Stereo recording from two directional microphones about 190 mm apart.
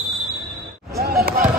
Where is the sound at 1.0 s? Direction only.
50° right (ahead or behind).